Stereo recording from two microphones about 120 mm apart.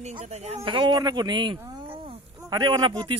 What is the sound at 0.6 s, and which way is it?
Speech, 40° right (ahead or behind).